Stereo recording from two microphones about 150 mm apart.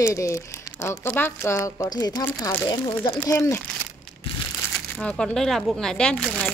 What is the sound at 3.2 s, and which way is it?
Speech, 20° left (ahead or behind).